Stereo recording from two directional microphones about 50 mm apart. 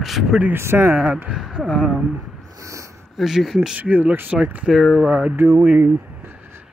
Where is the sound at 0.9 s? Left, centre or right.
Right.